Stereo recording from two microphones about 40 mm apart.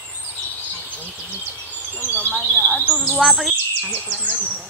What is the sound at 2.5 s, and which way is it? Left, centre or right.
Bird vocalization, centre.